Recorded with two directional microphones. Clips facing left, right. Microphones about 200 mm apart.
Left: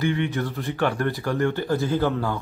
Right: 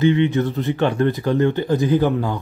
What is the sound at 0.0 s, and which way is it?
Speech, 20° right (ahead or behind).